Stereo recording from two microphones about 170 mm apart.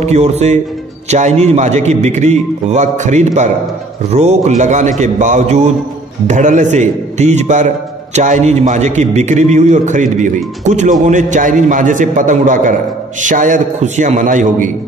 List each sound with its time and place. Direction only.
0.0 s a man's voice: 40° right (ahead or behind)